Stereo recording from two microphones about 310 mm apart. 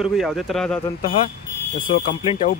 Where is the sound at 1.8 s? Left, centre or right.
Centre.